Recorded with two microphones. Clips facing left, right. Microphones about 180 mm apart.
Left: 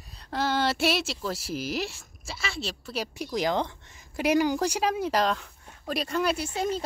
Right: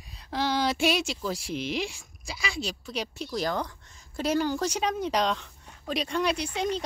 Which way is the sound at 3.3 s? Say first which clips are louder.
Left 4 dB; 15° left (ahead or behind).